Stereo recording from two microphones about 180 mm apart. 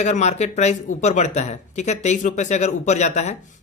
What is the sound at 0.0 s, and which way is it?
Speech, 40° left (ahead or behind).